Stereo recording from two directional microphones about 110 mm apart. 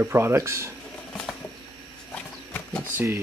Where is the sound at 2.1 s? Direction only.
10° left (ahead or behind).